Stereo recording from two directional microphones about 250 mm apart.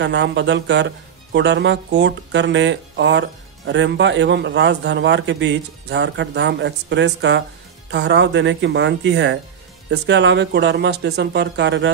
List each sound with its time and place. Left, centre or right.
0.0 s speech: right